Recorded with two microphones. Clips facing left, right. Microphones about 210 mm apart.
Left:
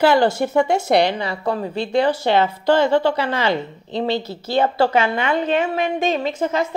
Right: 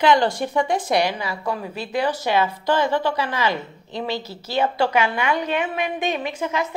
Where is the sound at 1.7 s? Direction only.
10° right (ahead or behind).